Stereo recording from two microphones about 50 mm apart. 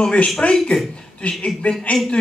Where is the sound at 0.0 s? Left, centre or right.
Left.